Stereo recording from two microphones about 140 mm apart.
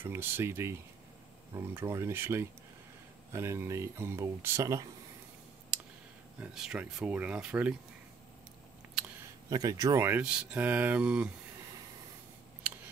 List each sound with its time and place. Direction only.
0.0 s speech: 15° right (ahead or behind)
6.4 s speech: 5° right (ahead or behind)
9.5 s speech: 25° right (ahead or behind); by 11.3 s 10° right (ahead or behind)